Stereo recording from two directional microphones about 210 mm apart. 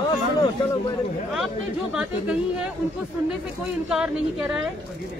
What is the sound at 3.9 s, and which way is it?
Speech, 5° right (ahead or behind).